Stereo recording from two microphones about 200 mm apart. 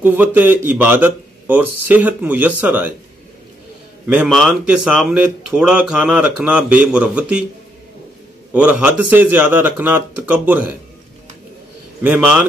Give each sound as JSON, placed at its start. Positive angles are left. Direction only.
{"t": 0.0, "sound": "speech", "side_deg": -10}
{"t": 4.1, "sound": "speech", "side_deg": -5}
{"t": 8.5, "sound": "speech", "side_deg": -5}
{"t": 12.0, "sound": "speech", "side_deg": -10}